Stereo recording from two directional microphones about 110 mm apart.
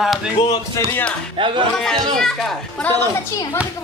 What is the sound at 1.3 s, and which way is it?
Speech, 50° right (ahead or behind).